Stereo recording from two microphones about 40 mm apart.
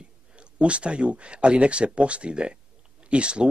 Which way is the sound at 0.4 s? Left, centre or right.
Right.